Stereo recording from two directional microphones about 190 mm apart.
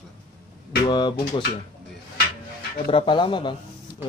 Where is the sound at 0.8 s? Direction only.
25° left (ahead or behind).